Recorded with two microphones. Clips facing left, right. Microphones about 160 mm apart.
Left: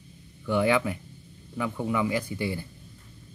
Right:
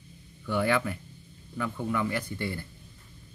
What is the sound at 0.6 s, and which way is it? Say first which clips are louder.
Speech: left 3 dB; 15° left (ahead or behind).